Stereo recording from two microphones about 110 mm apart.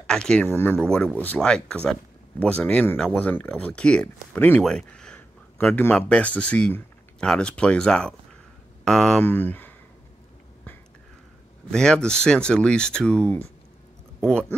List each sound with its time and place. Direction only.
0.0 s speech: 5° left (ahead or behind)
0.7 s speech: 5° left (ahead or behind)
4.6 s a sound: 5° left (ahead or behind)
5.7 s speech: 15° left (ahead or behind)
9.2 s speech: 15° left (ahead or behind)
11.7 s speech: 5° left (ahead or behind)